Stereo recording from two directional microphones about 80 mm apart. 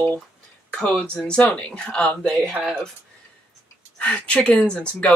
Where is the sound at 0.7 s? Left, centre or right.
Centre.